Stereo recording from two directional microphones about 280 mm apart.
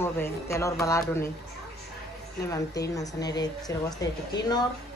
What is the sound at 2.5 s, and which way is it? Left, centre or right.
A woman's voice, centre.